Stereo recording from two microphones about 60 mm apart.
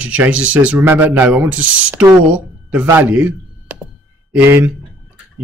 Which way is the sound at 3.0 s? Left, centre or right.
Right.